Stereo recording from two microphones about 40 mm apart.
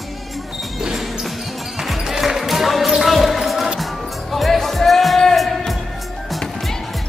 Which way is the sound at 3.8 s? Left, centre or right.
Centre.